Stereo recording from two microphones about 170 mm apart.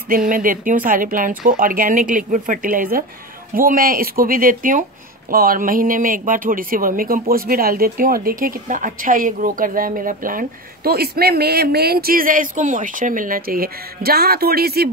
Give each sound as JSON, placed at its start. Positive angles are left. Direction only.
{"t": 0.1, "sound": "speech", "side_deg": -55}